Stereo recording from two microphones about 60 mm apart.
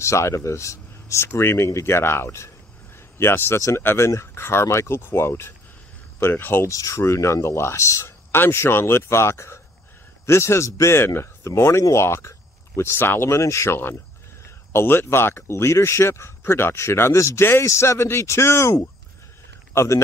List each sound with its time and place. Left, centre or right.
0.0 s speech: left
1.2 s speech: left
6.7 s speech: left
7.0 s speech: left
8.3 s speech: left
14.7 s speech: left